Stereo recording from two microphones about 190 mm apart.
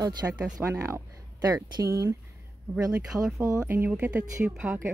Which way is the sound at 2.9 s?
Centre (ahead or behind).